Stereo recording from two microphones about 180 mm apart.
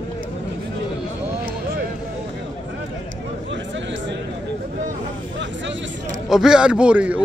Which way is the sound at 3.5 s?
90° right.